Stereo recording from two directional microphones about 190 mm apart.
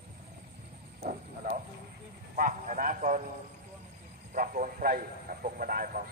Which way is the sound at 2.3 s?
45° right (ahead or behind).